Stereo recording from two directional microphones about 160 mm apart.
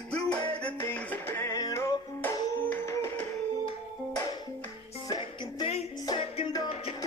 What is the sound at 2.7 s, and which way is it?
Music, 10° left (ahead or behind).